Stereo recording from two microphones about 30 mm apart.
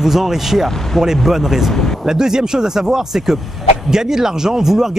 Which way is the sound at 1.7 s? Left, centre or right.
Centre.